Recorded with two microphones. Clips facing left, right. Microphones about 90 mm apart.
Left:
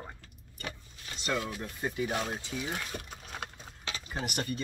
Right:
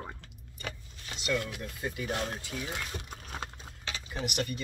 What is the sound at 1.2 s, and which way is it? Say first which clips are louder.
Speech: right 1 dB; 40° left (ahead or behind).